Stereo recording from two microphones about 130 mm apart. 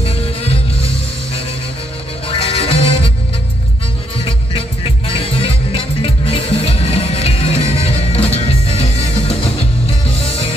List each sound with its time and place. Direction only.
0.0 s music: 50° left (ahead or behind)
2.2 s music: 45° left (ahead or behind)
4.2 s music: 45° left (ahead or behind)